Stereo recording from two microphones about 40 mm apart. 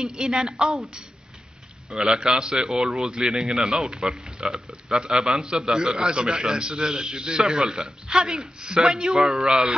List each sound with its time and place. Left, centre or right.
0.2 s a man's voice: centre
2.0 s a man's voice: right
5.4 s a man's voice: right